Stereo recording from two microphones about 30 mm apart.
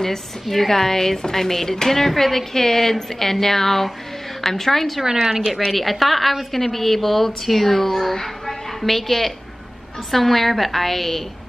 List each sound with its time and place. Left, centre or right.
0.5 s speech: centre
5.0 s a woman's voice: centre
5.7 s a woman's voice: centre